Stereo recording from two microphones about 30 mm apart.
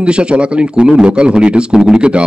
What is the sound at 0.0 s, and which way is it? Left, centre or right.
Speech, right.